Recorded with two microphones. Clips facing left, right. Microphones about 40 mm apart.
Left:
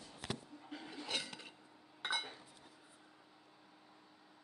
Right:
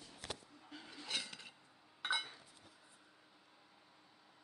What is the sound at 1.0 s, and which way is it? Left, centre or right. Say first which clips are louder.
Dishes: left 1 dB; centre.